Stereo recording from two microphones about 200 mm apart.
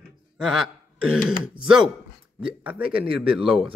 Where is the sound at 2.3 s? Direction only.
5° right (ahead or behind).